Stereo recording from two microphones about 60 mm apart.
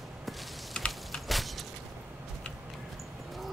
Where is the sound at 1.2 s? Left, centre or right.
Centre.